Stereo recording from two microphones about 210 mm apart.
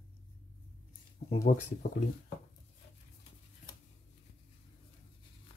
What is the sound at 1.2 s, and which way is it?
Speech, 40° left (ahead or behind).